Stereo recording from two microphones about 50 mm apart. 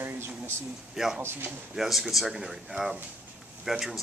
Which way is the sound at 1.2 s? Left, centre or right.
Right.